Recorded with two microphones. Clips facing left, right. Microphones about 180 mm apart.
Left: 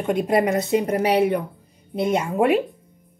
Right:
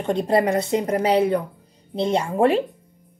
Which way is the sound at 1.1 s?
15° left (ahead or behind).